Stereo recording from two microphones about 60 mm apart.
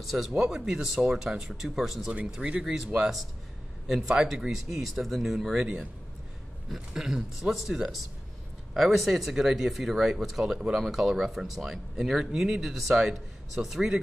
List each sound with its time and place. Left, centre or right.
0.0 s speech: centre
0.3 s speech: centre
2.3 s speech: centre
6.7 s speech: centre